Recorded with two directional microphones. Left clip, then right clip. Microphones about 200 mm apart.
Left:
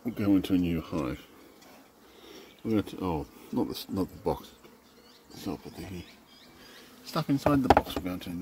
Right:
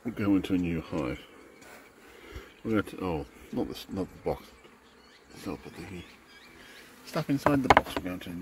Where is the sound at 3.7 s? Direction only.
20° left (ahead or behind).